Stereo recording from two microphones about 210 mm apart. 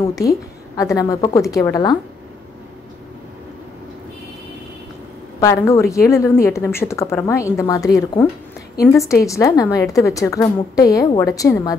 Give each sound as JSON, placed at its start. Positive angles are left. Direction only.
{"t": 0.1, "sound": "a woman's voice", "side_deg": 15}
{"t": 5.4, "sound": "a woman's voice", "side_deg": 15}